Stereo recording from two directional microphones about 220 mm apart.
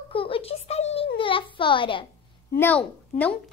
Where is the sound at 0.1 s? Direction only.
25° left (ahead or behind).